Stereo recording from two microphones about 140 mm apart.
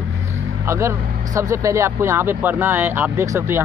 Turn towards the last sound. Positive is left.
turn(degrees=-20)  # may be behind; listen again after turning